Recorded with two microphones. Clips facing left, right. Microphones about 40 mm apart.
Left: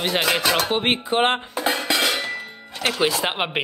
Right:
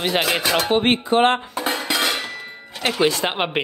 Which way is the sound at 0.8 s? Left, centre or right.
Centre.